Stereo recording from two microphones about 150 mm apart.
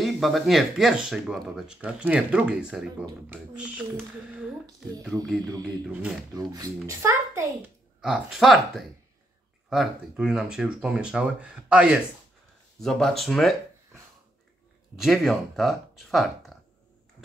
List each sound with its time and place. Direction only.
0.0 s speech: centre (ahead or behind)
6.3 s a child's voice: 25° right (ahead or behind)
8.0 s speech: 5° right (ahead or behind)
15.0 s speech: centre (ahead or behind)